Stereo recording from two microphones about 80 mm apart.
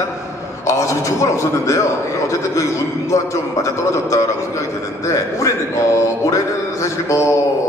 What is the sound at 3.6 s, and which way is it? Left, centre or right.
Speech, left.